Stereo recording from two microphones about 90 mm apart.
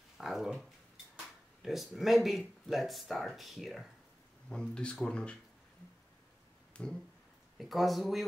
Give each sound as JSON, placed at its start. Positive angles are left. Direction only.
{"t": 0.2, "sound": "speech", "side_deg": 0}
{"t": 4.5, "sound": "speech", "side_deg": 10}
{"t": 6.7, "sound": "a sound", "side_deg": 10}
{"t": 7.5, "sound": "speech", "side_deg": 0}